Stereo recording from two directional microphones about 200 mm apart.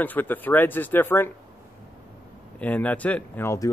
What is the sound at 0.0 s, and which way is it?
Speech, 10° left (ahead or behind).